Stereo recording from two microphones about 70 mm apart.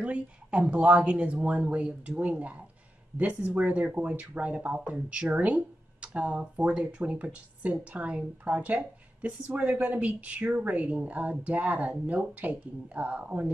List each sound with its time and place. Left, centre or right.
0.0 s speech: centre